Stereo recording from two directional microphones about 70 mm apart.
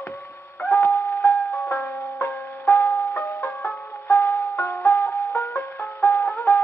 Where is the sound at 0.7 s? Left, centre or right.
Left.